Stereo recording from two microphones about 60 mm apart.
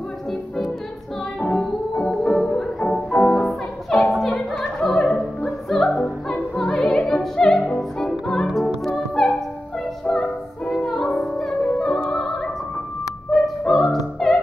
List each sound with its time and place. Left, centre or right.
1.4 s music: centre
2.0 s music: centre
3.4 s opera: centre
8.5 s music: centre